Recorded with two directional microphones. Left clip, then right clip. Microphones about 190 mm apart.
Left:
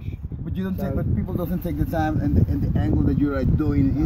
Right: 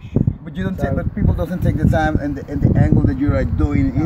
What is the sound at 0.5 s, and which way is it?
Speech, 15° right (ahead or behind).